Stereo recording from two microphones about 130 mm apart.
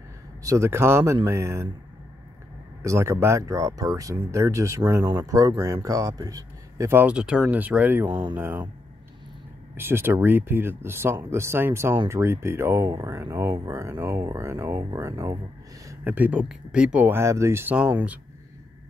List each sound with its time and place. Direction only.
0.4 s speech: 25° right (ahead or behind)
2.8 s speech: 20° right (ahead or behind)
8.1 s speech: 35° right (ahead or behind)
8.4 s speech: 15° right (ahead or behind)
9.8 s speech: 20° right (ahead or behind)